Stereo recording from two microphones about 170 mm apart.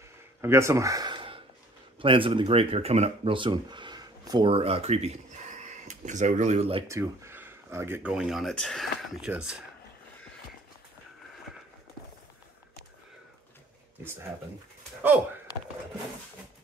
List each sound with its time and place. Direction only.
0.4 s speech: 15° right (ahead or behind); by 6.8 s 40° right (ahead or behind)
6.9 s speech: 15° right (ahead or behind)